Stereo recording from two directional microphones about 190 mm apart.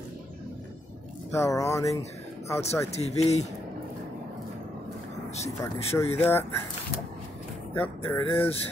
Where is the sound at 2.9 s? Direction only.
35° left (ahead or behind).